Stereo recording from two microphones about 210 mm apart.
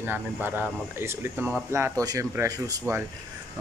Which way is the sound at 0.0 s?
10° right (ahead or behind).